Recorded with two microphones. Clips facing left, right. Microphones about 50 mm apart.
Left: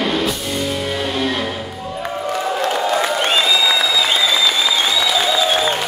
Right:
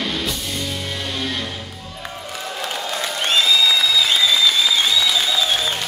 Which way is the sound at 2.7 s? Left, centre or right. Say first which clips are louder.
Left 6 dB; centre.